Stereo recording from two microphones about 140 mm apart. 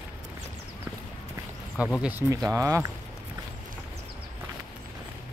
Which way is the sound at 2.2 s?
25° right (ahead or behind).